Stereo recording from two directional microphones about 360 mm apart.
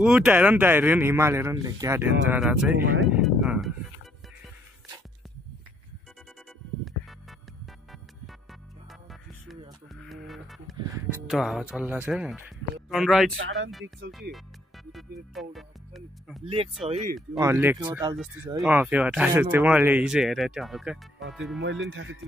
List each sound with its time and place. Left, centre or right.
0.0 s speech: centre
6.8 s music: centre
9.9 s music: centre
10.8 s speech: centre
16.4 s speech: centre
21.8 s speech: right